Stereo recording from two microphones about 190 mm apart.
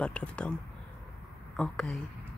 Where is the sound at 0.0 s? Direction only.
5° left (ahead or behind).